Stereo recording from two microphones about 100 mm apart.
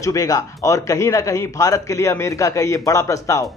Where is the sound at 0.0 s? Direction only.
35° left (ahead or behind).